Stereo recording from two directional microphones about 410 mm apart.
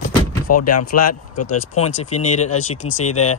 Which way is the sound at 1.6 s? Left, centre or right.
Centre.